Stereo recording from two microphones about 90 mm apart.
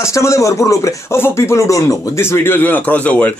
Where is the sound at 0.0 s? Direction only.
35° left (ahead or behind).